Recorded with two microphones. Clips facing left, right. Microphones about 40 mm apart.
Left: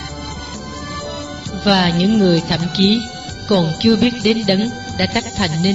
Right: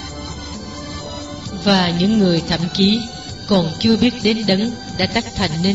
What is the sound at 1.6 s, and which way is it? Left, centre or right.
A woman's voice, centre.